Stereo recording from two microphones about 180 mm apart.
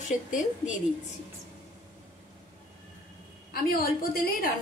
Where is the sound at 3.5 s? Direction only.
55° left (ahead or behind).